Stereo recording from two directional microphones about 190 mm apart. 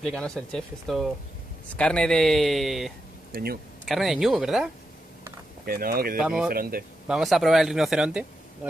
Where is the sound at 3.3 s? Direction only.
55° right (ahead or behind).